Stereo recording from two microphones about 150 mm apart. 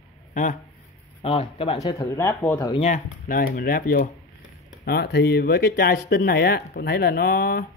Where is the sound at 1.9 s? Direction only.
20° left (ahead or behind).